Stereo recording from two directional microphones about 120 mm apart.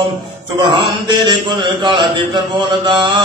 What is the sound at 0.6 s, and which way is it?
A man's voice, 45° right (ahead or behind).